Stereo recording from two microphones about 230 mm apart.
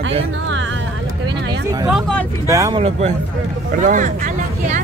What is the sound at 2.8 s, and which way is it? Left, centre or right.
Speech, right.